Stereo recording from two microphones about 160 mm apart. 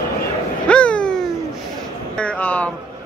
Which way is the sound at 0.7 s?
10° left (ahead or behind).